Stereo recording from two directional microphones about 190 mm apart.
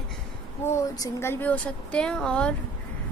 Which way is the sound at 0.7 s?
15° left (ahead or behind).